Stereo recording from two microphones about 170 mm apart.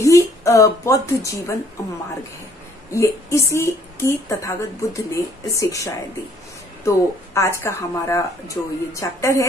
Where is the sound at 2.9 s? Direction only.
15° left (ahead or behind).